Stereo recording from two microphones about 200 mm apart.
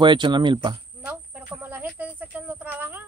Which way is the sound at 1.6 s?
10° right (ahead or behind).